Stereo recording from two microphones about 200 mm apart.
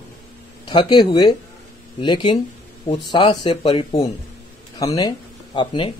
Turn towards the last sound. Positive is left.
turn(degrees=25)  # may be behind; listen again after turning